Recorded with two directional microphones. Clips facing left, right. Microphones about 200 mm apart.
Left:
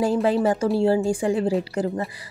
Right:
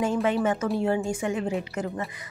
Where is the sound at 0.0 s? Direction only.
35° left (ahead or behind).